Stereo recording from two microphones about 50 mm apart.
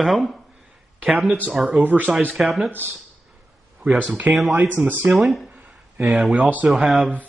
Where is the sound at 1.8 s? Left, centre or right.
Right.